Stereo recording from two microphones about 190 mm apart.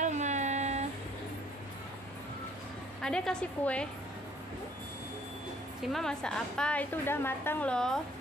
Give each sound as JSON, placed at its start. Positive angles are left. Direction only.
{"t": 0.0, "sound": "a sound", "side_deg": -40}
{"t": 3.0, "sound": "a woman's voice", "side_deg": 5}
{"t": 5.8, "sound": "a woman's voice", "side_deg": 0}